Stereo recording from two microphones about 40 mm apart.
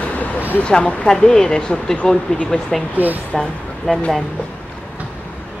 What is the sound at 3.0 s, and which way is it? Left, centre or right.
Speech, right.